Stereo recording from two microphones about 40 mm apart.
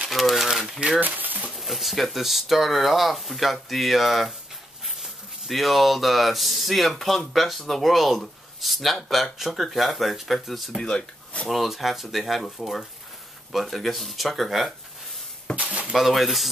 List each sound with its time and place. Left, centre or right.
0.1 s a sound: centre
0.5 s crumpling: centre
0.7 s speech: right
1.0 s speech: right
1.6 s speech: centre
10.8 s speech: centre
11.4 s speech: centre
15.5 s a sound: right
15.9 s speech: centre